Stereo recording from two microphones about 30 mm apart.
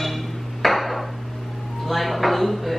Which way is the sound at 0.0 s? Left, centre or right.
Centre.